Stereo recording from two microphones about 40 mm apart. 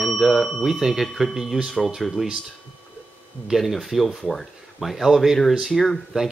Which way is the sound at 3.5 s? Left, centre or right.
Centre.